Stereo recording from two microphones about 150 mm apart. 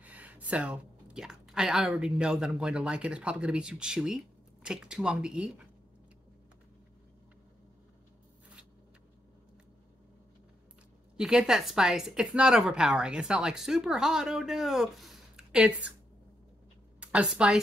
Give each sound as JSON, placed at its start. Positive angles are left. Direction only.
{"t": 0.0, "sound": "a woman's voice", "side_deg": -10}
{"t": 11.1, "sound": "a woman's voice", "side_deg": -5}
{"t": 17.0, "sound": "a woman's voice", "side_deg": -5}